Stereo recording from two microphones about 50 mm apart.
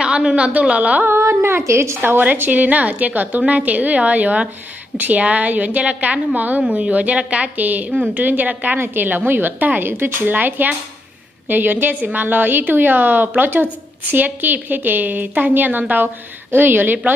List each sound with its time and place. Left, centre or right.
0.0 s a woman's voice: centre
0.5 s a woman's voice: right
1.0 s a sound: right
1.6 s a woman's voice: right
2.0 s a woman's voice: right
8.7 s a woman's voice: right